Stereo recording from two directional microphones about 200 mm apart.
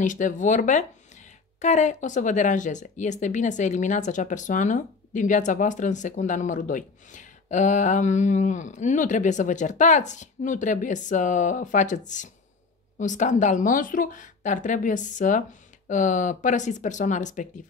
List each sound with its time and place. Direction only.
0.0 s speech: 40° left (ahead or behind)
13.0 s speech: 40° left (ahead or behind)